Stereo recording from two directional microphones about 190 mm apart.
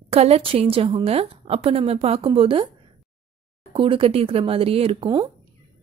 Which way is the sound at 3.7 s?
30° right (ahead or behind).